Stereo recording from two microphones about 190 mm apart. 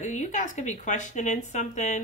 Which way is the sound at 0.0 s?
40° left (ahead or behind).